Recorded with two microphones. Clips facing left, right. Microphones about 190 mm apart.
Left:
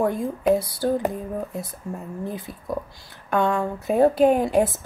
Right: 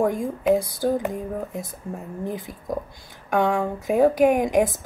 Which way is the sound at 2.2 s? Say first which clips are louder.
Right 3 dB; 15° right (ahead or behind).